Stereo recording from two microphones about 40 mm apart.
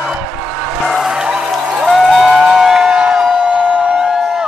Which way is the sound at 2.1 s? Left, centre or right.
Centre.